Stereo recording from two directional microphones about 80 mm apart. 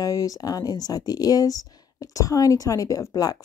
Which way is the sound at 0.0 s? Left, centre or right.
Left.